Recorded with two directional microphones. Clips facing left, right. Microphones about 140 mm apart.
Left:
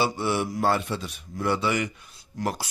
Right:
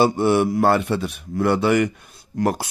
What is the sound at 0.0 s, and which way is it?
A man's voice, 50° right (ahead or behind).